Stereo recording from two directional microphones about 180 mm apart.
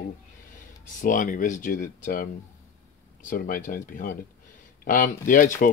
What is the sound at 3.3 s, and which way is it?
Speech, 50° left (ahead or behind).